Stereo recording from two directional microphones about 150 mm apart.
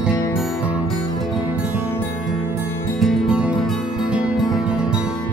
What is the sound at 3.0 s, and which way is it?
Music, centre (ahead or behind).